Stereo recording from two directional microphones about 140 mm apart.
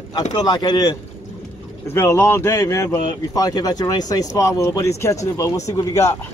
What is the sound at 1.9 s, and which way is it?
Speech, 15° left (ahead or behind).